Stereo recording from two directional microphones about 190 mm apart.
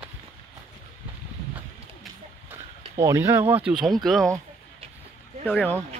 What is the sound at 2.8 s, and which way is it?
Speech, 15° right (ahead or behind).